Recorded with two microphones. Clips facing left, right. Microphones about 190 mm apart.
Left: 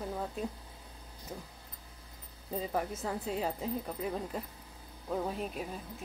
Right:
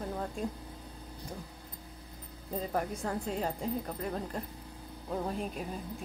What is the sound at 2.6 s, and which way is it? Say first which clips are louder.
Speech: right 1 dB; centre (ahead or behind).